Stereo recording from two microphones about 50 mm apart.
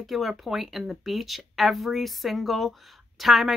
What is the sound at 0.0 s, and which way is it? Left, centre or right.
Speech, centre.